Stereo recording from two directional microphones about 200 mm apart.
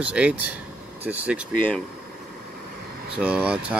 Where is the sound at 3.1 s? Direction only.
5° right (ahead or behind).